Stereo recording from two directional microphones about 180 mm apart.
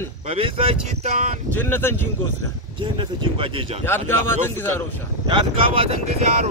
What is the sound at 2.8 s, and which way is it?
Speech, 25° right (ahead or behind).